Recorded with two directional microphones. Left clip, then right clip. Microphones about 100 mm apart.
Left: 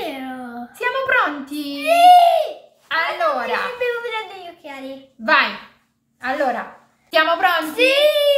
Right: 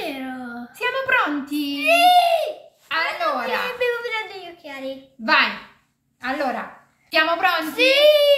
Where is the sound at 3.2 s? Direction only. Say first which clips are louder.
Left 3 dB; 30° left (ahead or behind).